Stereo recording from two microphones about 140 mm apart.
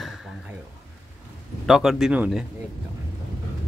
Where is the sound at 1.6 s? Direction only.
Centre (ahead or behind).